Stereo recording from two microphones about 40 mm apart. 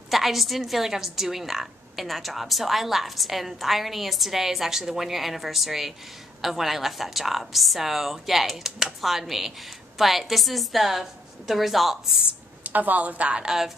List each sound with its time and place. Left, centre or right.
0.1 s a woman's voice: centre
12.6 s a woman's voice: right
13.3 s speech: centre